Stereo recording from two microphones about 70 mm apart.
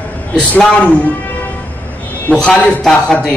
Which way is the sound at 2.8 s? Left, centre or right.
Centre.